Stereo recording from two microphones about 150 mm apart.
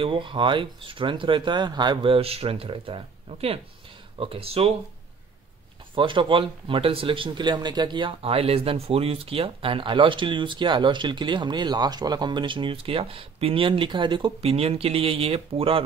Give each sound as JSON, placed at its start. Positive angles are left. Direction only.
{"t": 0.0, "sound": "speech", "side_deg": -35}
{"t": 5.9, "sound": "speech", "side_deg": -35}